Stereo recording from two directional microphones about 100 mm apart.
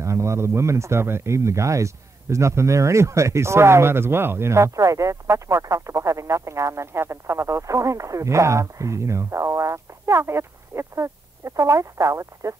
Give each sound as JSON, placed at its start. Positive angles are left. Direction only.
{"t": 0.0, "sound": "speech", "side_deg": -30}